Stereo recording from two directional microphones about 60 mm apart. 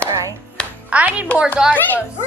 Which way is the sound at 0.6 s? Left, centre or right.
Centre.